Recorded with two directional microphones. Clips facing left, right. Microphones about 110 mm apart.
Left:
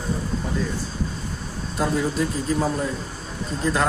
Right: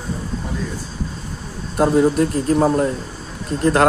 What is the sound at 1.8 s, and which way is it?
A man's voice, 55° right (ahead or behind).